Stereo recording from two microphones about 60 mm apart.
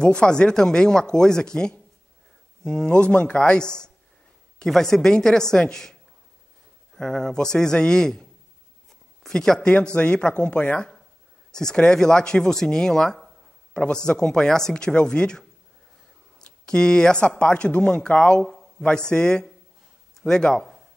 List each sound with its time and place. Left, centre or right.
0.0 s speech: centre
7.0 s speech: centre
9.3 s speech: centre
18.4 s a man's voice: centre